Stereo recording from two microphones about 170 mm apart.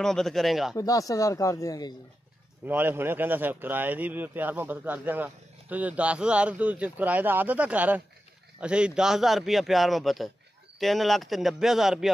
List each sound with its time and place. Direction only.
0.0 s a man's voice: centre (ahead or behind)
0.7 s speech: 20° left (ahead or behind)
2.6 s a man's voice: 10° right (ahead or behind)